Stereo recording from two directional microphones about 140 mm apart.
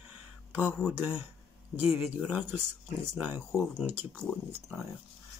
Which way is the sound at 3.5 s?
5° left (ahead or behind).